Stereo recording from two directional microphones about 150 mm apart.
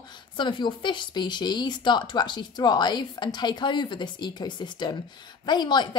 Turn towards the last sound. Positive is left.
turn(degrees=30)  # may be behind; listen again after turning